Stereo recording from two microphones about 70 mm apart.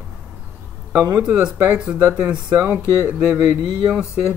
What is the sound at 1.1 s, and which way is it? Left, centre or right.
Speech, right.